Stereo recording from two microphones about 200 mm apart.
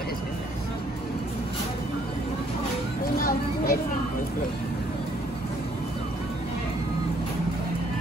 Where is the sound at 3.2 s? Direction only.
45° left (ahead or behind).